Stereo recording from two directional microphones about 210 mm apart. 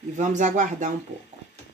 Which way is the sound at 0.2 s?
35° right (ahead or behind).